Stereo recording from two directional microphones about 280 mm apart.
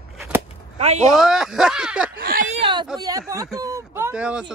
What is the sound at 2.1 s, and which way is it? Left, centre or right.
Speech, right.